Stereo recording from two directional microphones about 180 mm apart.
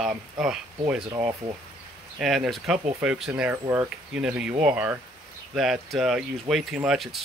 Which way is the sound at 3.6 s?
15° right (ahead or behind).